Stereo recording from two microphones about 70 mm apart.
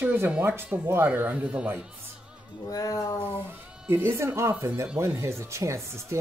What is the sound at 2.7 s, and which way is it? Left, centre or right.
Cat, left.